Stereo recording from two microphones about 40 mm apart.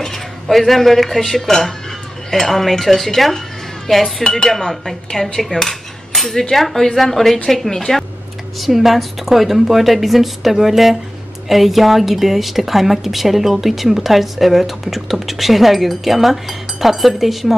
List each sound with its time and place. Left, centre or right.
0.0 s a woman's voice: centre
4.5 s cutlery: centre
6.5 s a woman's voice: centre
8.5 s a woman's voice: centre